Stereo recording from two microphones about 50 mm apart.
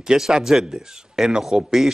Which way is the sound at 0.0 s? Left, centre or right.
Centre.